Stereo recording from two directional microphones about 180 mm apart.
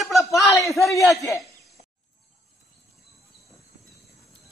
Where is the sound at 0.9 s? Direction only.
15° left (ahead or behind).